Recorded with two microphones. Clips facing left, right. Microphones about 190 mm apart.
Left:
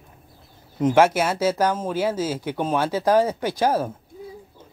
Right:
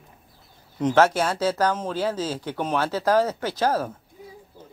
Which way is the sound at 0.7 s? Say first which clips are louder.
Left 2 dB; 10° left (ahead or behind).